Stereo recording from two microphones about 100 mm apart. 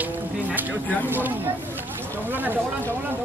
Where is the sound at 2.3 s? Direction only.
20° right (ahead or behind).